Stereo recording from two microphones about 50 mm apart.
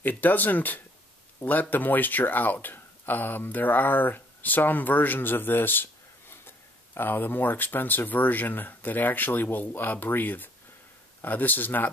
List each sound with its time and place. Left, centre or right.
0.0 s speech: left